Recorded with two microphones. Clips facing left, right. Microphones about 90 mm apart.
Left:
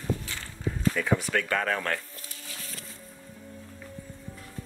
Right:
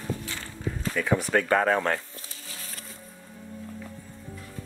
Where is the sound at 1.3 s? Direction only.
30° right (ahead or behind).